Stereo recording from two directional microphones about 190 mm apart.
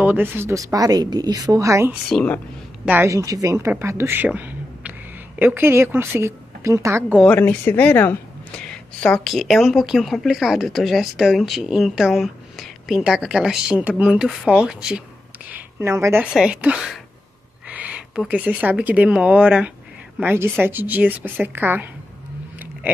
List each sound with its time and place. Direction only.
0.0 s a woman's voice: 10° right (ahead or behind)
2.0 s speech: 5° left (ahead or behind)
2.8 s a woman's voice: 10° right (ahead or behind)
7.2 s a woman's voice: 10° left (ahead or behind); by 21.8 s 10° right (ahead or behind)